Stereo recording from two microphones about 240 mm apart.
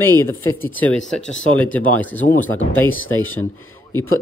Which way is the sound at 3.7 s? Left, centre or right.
Centre.